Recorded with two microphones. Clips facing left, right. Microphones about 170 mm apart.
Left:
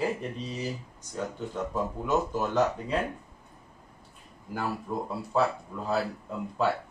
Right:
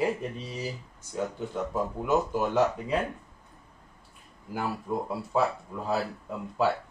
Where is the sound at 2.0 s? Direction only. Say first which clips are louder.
Right 2 dB; 10° right (ahead or behind).